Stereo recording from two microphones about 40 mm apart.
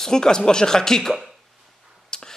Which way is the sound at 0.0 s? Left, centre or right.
Centre.